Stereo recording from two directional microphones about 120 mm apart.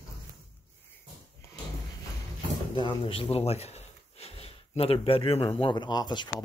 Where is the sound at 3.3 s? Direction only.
60° left (ahead or behind).